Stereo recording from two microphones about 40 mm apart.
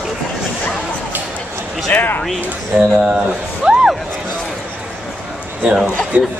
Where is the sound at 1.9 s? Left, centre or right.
Left.